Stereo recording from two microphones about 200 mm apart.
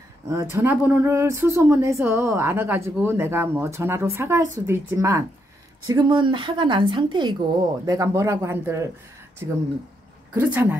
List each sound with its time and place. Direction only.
0.3 s speech: 15° right (ahead or behind)
10.3 s speech: 10° right (ahead or behind)